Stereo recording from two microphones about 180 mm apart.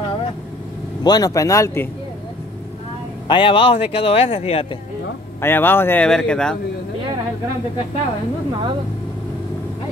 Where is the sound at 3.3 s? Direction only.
25° left (ahead or behind).